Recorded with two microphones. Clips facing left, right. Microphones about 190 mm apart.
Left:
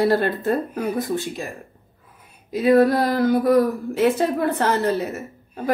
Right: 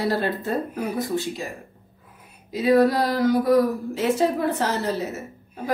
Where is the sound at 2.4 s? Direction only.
55° left (ahead or behind).